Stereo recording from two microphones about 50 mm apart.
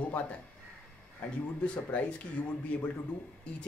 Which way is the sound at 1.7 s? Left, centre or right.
Left.